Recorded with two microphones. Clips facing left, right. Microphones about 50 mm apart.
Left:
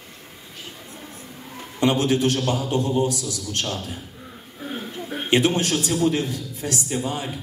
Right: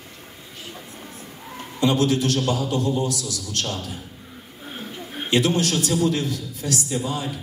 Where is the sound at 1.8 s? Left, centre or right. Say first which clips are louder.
Left 1 dB; left.